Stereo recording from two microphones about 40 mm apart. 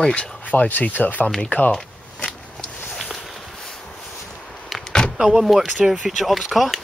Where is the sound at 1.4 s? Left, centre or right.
Left.